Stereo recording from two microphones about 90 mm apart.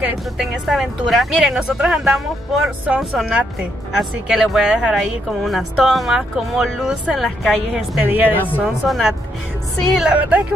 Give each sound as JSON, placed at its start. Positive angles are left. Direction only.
{"t": 0.4, "sound": "speech", "side_deg": -5}
{"t": 8.0, "sound": "speech", "side_deg": -20}
{"t": 8.8, "sound": "speech", "side_deg": 0}
{"t": 9.9, "sound": "a woman's voice", "side_deg": -15}